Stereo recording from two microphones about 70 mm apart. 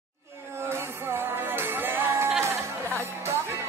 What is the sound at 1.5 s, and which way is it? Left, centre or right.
Music, right.